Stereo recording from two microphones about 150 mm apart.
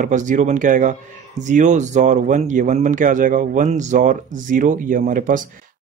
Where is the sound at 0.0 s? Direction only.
55° right (ahead or behind).